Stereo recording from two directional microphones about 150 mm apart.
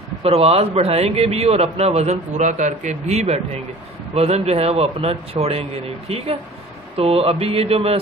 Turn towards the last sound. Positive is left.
turn(degrees=-40)  # may be behind; listen again after turning